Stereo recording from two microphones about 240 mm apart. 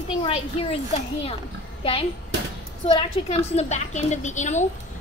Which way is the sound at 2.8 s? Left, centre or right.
Left.